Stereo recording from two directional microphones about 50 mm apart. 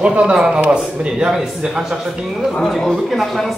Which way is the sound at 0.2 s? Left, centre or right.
Centre.